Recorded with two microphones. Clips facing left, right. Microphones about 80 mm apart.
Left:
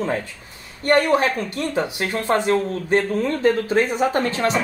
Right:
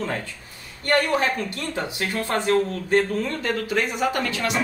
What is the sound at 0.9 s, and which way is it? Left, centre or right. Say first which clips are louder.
Speech: left 4 dB; left.